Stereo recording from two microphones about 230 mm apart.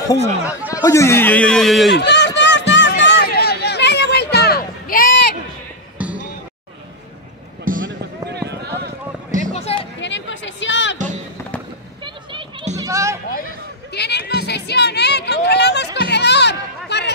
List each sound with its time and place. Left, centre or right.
0.4 s speech: centre
0.8 s speech: centre
2.0 s run: left
6.0 s basketball bounce: centre
7.6 s basketball bounce: right
9.4 s music: left
9.9 s a sound: left
12.0 s a sound: right
13.9 s a sound: left